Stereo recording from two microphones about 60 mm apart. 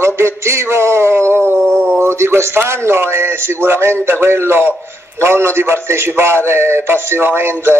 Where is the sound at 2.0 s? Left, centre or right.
Right.